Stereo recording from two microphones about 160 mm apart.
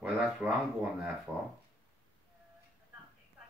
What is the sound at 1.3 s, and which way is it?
Speech, 10° right (ahead or behind).